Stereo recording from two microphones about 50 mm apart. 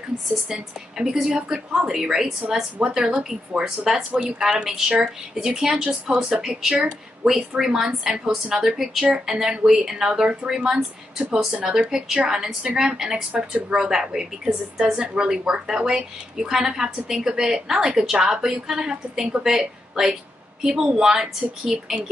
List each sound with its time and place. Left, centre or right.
0.5 s a woman's voice: centre
3.0 s a woman's voice: right; by 22.0 s centre